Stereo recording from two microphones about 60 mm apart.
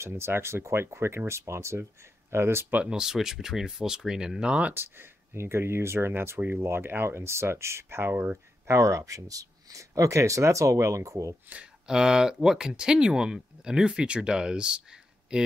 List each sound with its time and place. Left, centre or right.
0.0 s speech: right
2.9 s speech: centre
4.7 s speech: right
8.6 s speech: right
11.4 s speech: right
11.9 s speech: centre